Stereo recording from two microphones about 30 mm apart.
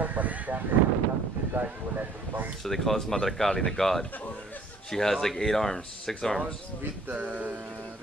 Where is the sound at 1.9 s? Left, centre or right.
Right.